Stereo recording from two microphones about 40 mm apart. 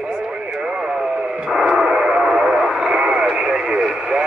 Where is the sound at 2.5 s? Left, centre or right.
Right.